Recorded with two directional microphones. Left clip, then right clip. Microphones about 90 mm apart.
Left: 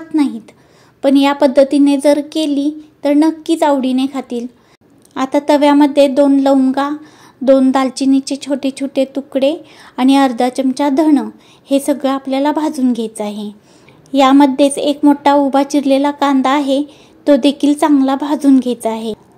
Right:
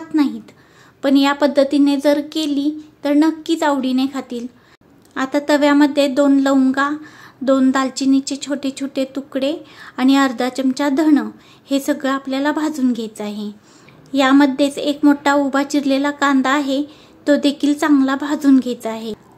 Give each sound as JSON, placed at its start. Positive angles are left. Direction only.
{"t": 0.1, "sound": "a sound", "side_deg": 30}
{"t": 1.0, "sound": "speech", "side_deg": 30}
{"t": 6.1, "sound": "speech", "side_deg": 25}